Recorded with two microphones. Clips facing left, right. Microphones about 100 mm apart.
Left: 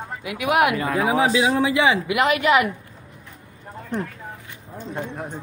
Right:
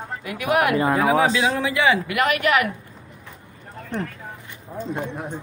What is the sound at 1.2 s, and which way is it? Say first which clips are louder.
A man's voice: left 2 dB; 15° left (ahead or behind).